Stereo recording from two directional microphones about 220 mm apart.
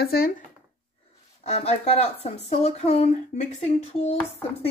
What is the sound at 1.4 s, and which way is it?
Speech, 30° left (ahead or behind).